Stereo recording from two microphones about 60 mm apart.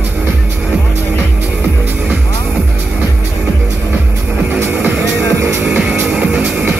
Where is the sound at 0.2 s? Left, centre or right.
Right.